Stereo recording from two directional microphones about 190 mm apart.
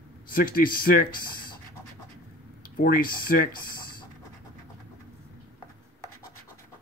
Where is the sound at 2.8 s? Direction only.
50° left (ahead or behind).